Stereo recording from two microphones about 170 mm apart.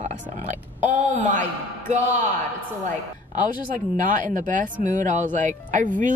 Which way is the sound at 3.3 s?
50° right (ahead or behind).